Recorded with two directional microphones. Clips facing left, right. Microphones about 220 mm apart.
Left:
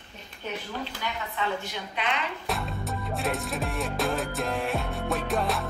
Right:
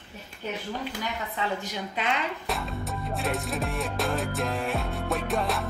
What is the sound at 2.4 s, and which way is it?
Music, centre (ahead or behind).